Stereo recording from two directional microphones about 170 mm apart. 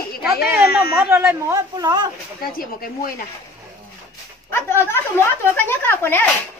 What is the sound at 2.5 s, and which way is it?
Speech, 60° left (ahead or behind).